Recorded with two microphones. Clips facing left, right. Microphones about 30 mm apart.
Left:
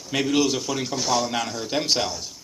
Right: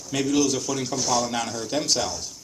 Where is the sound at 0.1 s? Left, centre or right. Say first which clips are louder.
Left 1 dB; left.